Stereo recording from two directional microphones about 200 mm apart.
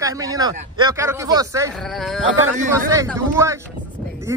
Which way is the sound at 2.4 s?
15° right (ahead or behind).